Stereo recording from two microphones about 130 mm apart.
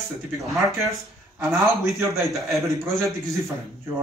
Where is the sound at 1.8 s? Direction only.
Centre (ahead or behind).